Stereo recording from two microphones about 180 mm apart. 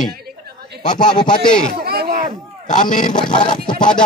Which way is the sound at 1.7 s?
60° right (ahead or behind).